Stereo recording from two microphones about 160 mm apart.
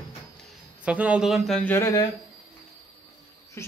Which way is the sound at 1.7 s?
20° left (ahead or behind).